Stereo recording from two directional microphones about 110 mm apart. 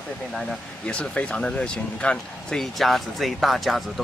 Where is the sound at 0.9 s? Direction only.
10° left (ahead or behind).